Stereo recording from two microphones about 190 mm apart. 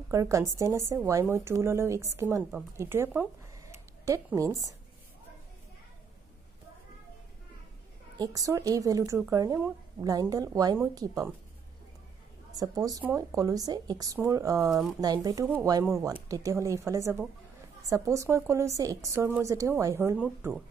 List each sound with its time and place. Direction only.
0.1 s speech: 15° right (ahead or behind)
8.2 s speech: 20° right (ahead or behind)
12.5 s speech: 20° right (ahead or behind)